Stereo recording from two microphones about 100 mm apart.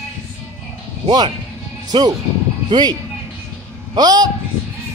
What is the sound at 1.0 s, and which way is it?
A man's voice, 45° right (ahead or behind).